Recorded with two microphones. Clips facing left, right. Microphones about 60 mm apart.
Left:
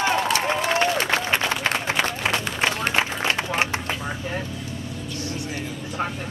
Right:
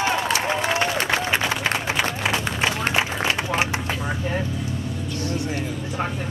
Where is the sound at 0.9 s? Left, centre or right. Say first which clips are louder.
Even; centre.